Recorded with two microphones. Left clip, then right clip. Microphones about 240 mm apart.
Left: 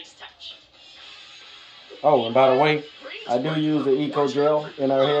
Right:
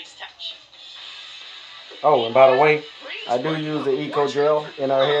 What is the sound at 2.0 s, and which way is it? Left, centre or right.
Speech, right.